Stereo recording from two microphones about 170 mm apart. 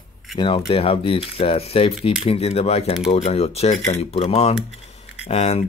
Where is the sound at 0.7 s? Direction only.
30° left (ahead or behind).